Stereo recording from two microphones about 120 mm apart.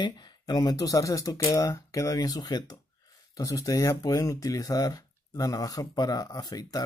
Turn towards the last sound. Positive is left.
turn(degrees=30)  # may be behind; listen again after turning